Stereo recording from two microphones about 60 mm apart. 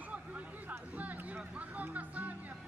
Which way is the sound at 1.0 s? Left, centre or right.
Right.